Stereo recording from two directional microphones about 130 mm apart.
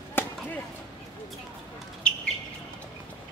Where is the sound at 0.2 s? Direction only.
15° left (ahead or behind).